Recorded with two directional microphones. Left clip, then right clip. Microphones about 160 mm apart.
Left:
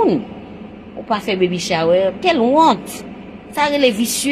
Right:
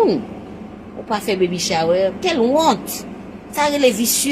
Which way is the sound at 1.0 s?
45° left (ahead or behind).